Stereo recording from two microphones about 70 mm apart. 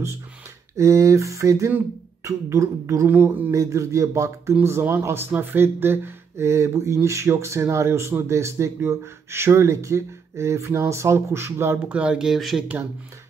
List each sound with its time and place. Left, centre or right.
0.7 s a sound: right
3.1 s speech: right
3.5 s a sound: right
4.6 s speech: right
11.9 s speech: centre
12.4 s speech: centre